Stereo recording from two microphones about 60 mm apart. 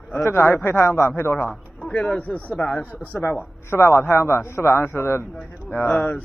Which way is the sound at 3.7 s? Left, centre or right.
Left.